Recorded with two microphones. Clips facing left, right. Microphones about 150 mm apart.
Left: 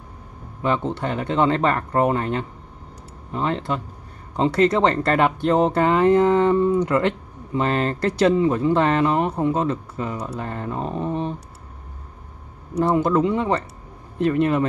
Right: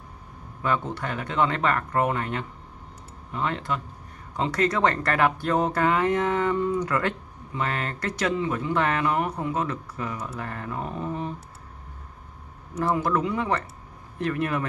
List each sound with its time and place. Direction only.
0.6 s speech: 25° left (ahead or behind)
12.7 s speech: 25° left (ahead or behind)